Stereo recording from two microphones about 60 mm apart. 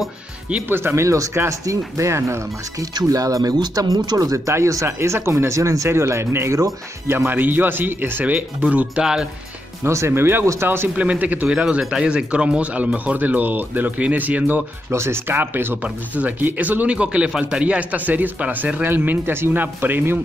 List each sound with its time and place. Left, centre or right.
0.7 s speech: right
1.0 s speech: right
4.6 s speech: right
4.8 s speech: right
7.2 s speech: right
8.5 s speech: centre
9.8 s speech: right
11.0 s speech: right
11.5 s speech: centre; by 14.6 s right
14.9 s speech: right